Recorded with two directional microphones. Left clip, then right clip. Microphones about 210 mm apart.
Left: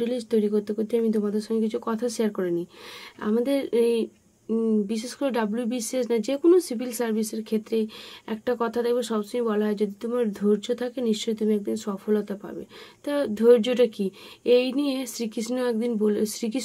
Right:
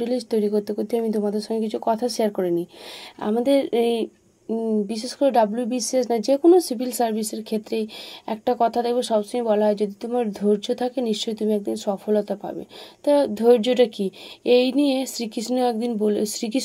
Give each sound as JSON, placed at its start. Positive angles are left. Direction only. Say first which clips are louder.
{"t": 0.0, "sound": "speech", "louder": "right 2 dB", "side_deg": -10}